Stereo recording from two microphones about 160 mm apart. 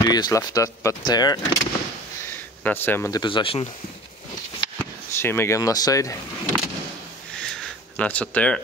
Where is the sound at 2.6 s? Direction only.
10° left (ahead or behind).